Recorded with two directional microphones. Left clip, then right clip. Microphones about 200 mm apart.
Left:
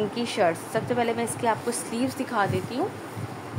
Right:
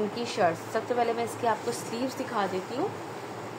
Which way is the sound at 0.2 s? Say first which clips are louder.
Left 3 dB; 25° left (ahead or behind).